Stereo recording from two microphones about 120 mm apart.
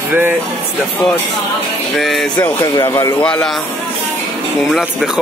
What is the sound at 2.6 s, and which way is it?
Speech, 25° left (ahead or behind).